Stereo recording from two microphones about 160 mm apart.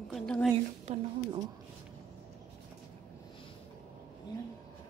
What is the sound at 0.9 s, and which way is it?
Speech, 45° right (ahead or behind).